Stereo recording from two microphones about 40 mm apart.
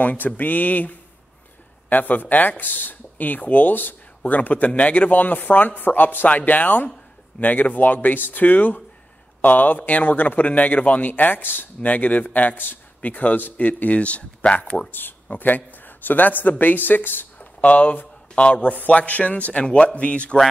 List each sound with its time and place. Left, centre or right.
0.0 s speech: left
11.9 s a man's voice: left
14.9 s speech: left
17.4 s a sound: left
18.3 s a man's voice: left
18.6 s a man's voice: left
19.6 s speech: left